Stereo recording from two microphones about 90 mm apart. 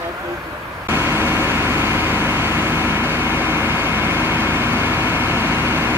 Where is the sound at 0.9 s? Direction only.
30° right (ahead or behind).